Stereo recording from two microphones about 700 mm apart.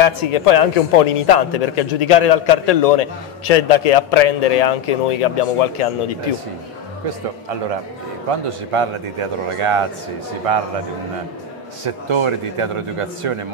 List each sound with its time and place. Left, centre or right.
0.0 s a man's voice: left
8.7 s a man's voice: right
11.8 s a man's voice: right